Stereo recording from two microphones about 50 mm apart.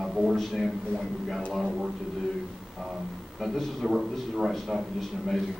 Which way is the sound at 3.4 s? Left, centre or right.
Centre.